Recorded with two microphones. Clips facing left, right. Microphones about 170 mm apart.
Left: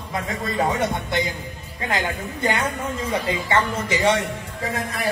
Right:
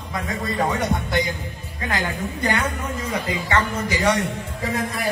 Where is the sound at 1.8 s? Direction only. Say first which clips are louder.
Even; 25° left (ahead or behind).